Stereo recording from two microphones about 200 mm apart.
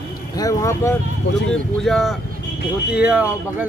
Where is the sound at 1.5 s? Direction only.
Centre (ahead or behind).